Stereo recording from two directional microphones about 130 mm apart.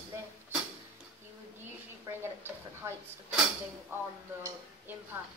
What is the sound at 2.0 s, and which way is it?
Speech, 20° right (ahead or behind).